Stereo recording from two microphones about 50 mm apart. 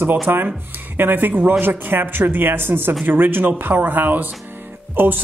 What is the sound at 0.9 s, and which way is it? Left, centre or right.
Speech, right.